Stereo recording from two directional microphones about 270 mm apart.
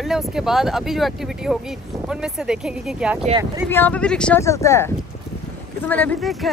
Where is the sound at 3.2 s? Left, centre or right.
Centre.